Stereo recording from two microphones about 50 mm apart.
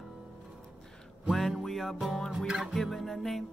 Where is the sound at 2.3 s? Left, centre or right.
Centre.